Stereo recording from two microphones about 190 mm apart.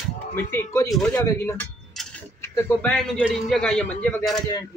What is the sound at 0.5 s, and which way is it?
Speech, 15° left (ahead or behind).